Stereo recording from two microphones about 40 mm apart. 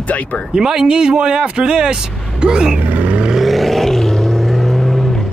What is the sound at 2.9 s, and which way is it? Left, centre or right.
Vehicle, right.